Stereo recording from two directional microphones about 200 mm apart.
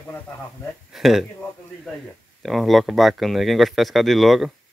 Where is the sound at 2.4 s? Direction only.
Centre (ahead or behind).